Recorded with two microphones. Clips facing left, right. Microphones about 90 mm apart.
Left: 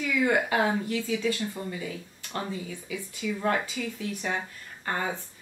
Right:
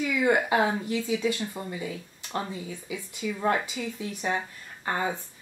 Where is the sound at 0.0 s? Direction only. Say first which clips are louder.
Right 1 dB; 15° right (ahead or behind).